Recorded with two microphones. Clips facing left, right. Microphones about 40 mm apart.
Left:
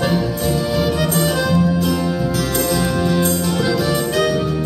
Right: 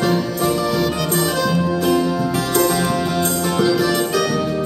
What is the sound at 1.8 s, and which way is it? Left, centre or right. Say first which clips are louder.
Music: right 3 dB; centre.